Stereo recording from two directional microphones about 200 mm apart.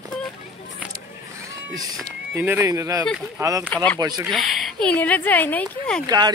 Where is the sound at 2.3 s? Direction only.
10° right (ahead or behind).